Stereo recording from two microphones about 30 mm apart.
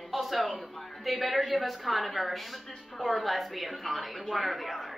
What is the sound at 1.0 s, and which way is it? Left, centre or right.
A woman's voice, centre.